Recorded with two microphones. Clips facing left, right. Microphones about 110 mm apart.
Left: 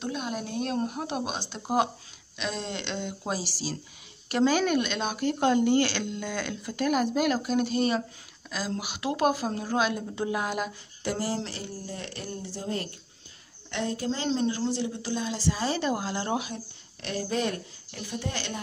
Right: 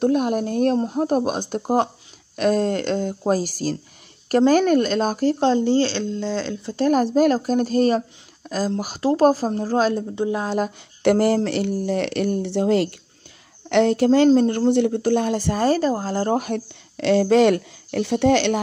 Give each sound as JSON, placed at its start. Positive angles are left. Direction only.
{"t": 0.0, "sound": "speech", "side_deg": -50}
{"t": 0.7, "sound": "speech", "side_deg": -35}
{"t": 10.1, "sound": "speech", "side_deg": -25}
{"t": 11.0, "sound": "speech", "side_deg": -65}
{"t": 13.7, "sound": "speech", "side_deg": -75}
{"t": 14.3, "sound": "speech", "side_deg": -45}
{"t": 16.4, "sound": "speech", "side_deg": -75}